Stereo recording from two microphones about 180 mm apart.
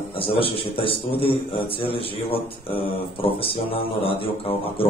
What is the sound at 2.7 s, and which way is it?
Mantra, 30° left (ahead or behind).